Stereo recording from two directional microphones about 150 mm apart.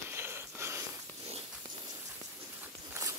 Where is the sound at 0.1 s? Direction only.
15° right (ahead or behind).